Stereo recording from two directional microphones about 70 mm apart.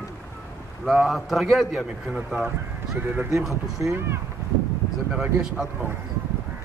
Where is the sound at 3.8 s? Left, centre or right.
Right.